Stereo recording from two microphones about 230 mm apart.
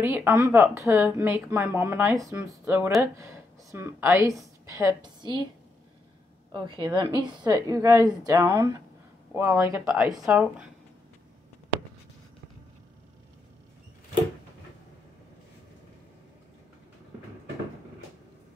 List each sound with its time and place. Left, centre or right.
0.0 s a woman's voice: centre
6.5 s a woman's voice: centre
10.0 s speech: centre